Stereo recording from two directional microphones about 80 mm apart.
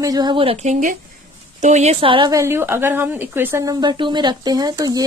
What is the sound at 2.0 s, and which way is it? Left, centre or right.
Speech, right.